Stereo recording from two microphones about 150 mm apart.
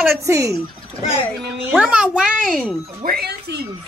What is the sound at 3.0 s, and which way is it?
Speech, 90° right.